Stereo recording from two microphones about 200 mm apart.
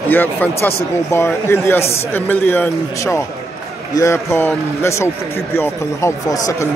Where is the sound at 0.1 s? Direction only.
10° left (ahead or behind).